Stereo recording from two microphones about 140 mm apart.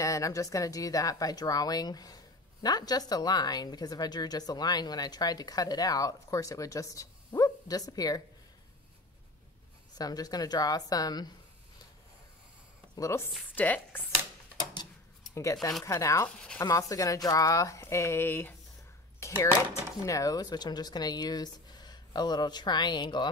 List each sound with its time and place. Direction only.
0.0 s a woman's voice: 25° left (ahead or behind)
9.9 s a woman's voice: 25° left (ahead or behind)
12.9 s a woman's voice: 20° left (ahead or behind)
15.3 s a woman's voice: 25° left (ahead or behind)
19.1 s a sound: 20° left (ahead or behind)
20.1 s a woman's voice: 25° left (ahead or behind)